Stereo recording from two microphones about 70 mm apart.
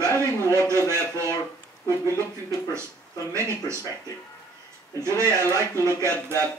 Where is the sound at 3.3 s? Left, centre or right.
Right.